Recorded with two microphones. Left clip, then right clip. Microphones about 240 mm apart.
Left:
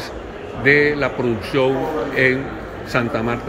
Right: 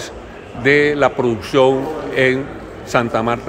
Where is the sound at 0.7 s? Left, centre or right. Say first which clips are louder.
Right 2 dB; centre.